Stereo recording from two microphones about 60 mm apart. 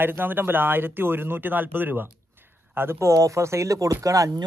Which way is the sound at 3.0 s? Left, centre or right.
Right.